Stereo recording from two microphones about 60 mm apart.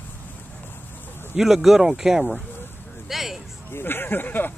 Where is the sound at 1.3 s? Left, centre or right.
Centre.